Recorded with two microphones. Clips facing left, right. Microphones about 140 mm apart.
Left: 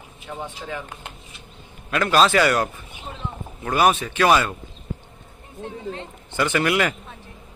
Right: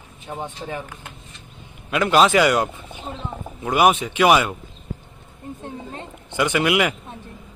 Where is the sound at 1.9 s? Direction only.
15° right (ahead or behind).